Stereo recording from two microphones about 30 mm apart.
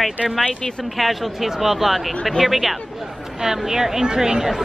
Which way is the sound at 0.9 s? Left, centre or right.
Centre.